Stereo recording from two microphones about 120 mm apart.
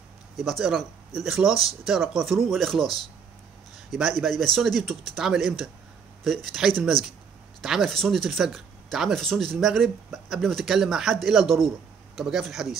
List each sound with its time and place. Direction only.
0.4 s speech: centre (ahead or behind)